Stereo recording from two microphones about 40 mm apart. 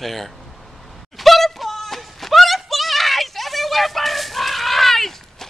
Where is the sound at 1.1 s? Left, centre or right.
Centre.